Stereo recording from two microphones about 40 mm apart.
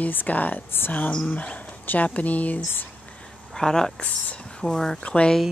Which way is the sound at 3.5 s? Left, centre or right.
Centre.